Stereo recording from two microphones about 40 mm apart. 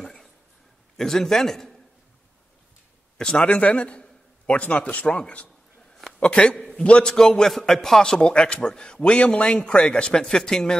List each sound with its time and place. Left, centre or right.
0.0 s a sound: centre
0.9 s a man's voice: centre
3.2 s speech: left
3.4 s a man's voice: left
6.1 s a man's voice: left
8.2 s a man's voice: left